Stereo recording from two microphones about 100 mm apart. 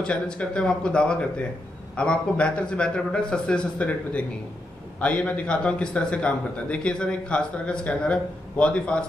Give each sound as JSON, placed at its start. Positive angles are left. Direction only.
{"t": 0.0, "sound": "a man's voice", "side_deg": 10}